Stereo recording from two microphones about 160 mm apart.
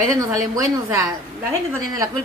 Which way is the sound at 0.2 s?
20° right (ahead or behind).